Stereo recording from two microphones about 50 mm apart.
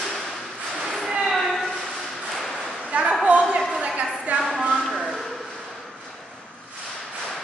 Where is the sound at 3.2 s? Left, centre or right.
Right.